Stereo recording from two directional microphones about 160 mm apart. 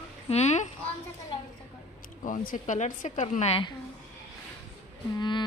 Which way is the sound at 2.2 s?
55° left (ahead or behind).